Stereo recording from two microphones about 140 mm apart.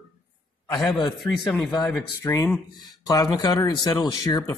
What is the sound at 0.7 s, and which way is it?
Speech, centre (ahead or behind).